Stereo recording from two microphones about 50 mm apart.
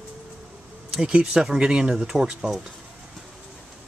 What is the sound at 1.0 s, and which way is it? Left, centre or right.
Speech, centre.